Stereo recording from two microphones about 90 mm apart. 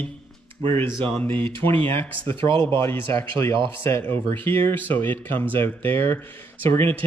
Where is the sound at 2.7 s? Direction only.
30° left (ahead or behind).